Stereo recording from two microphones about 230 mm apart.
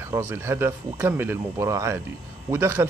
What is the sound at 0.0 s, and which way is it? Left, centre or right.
Speech, centre.